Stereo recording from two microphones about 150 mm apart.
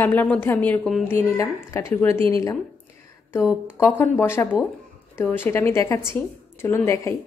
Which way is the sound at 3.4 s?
5° right (ahead or behind).